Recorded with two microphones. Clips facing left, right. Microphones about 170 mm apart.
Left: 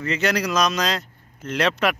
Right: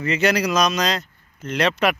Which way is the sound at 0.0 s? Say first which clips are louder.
Right 3 dB; 5° right (ahead or behind).